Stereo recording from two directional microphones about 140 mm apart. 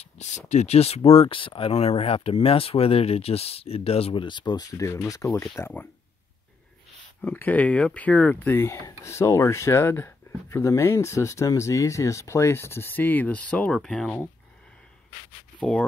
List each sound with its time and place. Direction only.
0.0 s a sound: 55° left (ahead or behind)
0.5 s speech: 55° left (ahead or behind); by 5.7 s 20° left (ahead or behind)
7.2 s speech: 10° left (ahead or behind)